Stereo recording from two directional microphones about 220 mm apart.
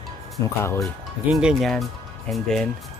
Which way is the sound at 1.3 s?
Centre (ahead or behind).